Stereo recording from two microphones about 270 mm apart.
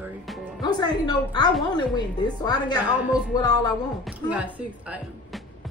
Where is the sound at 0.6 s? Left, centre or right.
Centre.